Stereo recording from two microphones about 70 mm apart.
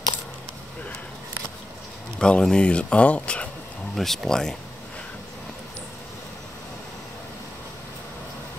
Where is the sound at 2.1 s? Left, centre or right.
Centre.